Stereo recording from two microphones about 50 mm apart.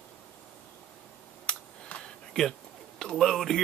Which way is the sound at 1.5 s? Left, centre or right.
Left.